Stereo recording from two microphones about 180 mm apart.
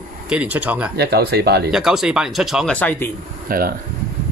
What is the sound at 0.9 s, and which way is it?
Speech, 65° right (ahead or behind).